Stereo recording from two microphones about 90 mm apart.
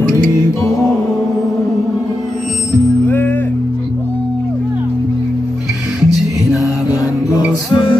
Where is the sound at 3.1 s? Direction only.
20° left (ahead or behind).